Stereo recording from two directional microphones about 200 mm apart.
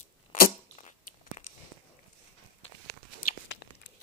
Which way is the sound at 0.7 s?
35° left (ahead or behind).